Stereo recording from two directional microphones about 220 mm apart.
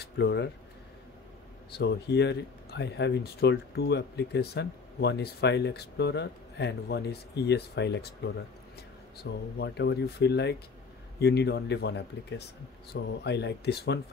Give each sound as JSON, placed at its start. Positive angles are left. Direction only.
{"t": 0.0, "sound": "speech", "side_deg": 50}
{"t": 1.7, "sound": "speech", "side_deg": 50}